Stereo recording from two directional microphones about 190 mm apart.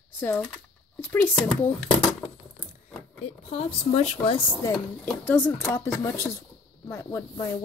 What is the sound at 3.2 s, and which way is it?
A woman's voice, 35° left (ahead or behind).